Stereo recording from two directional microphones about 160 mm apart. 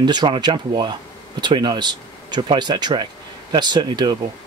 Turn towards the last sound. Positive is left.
turn(degrees=-25)  # may be behind; listen again after turning